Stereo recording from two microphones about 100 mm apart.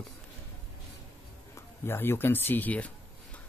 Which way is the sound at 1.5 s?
25° left (ahead or behind).